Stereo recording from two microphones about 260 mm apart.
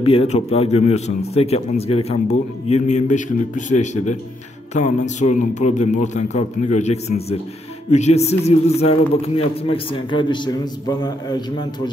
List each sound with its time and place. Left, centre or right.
0.0 s a man's voice: left